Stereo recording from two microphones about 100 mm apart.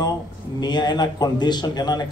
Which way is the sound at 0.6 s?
45° left (ahead or behind).